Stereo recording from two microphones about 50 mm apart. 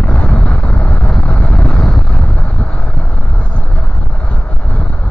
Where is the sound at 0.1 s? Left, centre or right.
Left.